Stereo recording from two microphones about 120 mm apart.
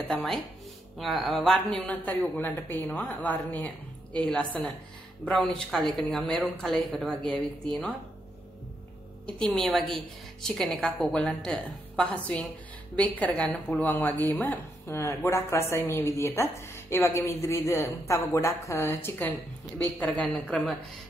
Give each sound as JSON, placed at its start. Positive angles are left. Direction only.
{"t": 0.1, "sound": "a woman's voice", "side_deg": 5}
{"t": 9.2, "sound": "a woman's voice", "side_deg": 5}